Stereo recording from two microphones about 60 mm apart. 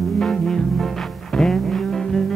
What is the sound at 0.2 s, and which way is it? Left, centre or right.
Music, centre.